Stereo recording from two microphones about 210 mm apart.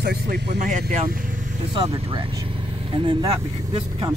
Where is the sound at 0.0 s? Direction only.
50° right (ahead or behind).